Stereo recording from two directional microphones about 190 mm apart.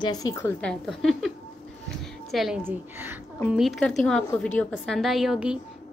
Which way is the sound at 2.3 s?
Centre (ahead or behind).